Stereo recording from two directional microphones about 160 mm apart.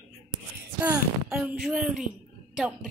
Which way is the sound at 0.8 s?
10° right (ahead or behind).